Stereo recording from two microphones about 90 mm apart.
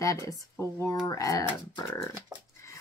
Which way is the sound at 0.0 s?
40° left (ahead or behind).